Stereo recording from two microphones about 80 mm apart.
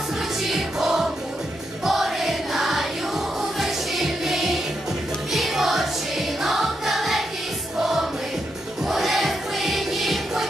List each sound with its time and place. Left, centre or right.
0.5 s music: centre